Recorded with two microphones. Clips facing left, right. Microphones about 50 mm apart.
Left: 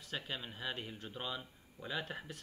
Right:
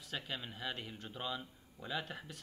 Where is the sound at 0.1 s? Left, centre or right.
Centre.